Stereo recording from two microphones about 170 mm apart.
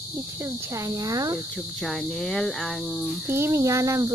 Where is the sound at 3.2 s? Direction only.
15° right (ahead or behind).